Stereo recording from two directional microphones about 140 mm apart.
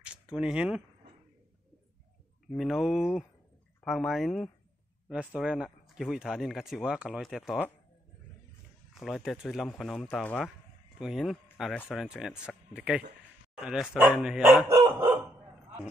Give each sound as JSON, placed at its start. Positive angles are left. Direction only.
{"t": 0.0, "sound": "speech", "side_deg": -5}
{"t": 2.5, "sound": "speech", "side_deg": 0}
{"t": 9.0, "sound": "speech", "side_deg": 0}
{"t": 14.4, "sound": "speech", "side_deg": -15}